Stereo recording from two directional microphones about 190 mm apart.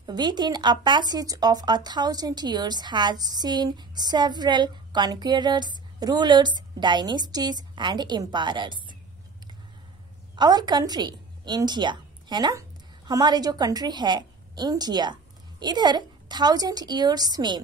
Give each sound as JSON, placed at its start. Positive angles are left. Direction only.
{"t": 0.0, "sound": "speech", "side_deg": -20}
{"t": 10.3, "sound": "a woman's voice", "side_deg": -20}